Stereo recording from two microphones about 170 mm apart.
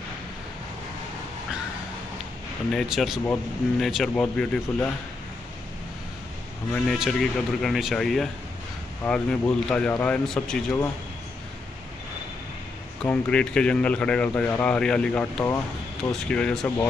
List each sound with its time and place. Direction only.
2.7 s speech: centre (ahead or behind)
6.7 s speech: centre (ahead or behind)
13.0 s speech: 5° left (ahead or behind)